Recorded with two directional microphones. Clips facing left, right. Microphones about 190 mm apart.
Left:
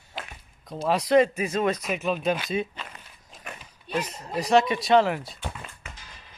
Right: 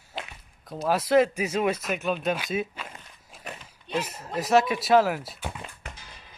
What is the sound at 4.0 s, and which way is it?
Speech, 5° right (ahead or behind).